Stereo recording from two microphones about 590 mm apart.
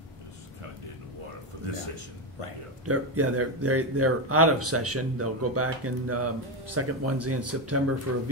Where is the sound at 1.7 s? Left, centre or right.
Right.